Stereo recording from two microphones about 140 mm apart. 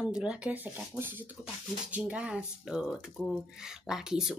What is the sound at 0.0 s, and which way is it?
Speech, 5° right (ahead or behind).